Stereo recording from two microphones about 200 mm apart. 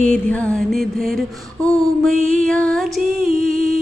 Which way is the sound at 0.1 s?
5° left (ahead or behind).